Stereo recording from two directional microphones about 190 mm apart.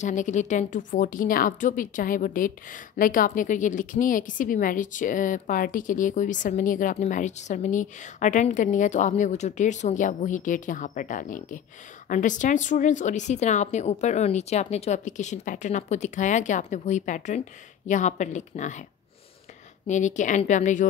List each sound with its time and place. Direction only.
0.0 s a woman's voice: 40° left (ahead or behind)
19.9 s speech: 40° left (ahead or behind)